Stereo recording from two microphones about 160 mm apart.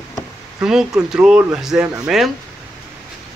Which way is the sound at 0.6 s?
5° right (ahead or behind).